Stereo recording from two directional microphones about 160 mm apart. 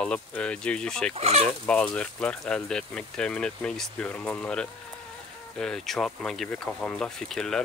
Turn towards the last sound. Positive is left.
turn(degrees=0)  # may be behind; listen again after turning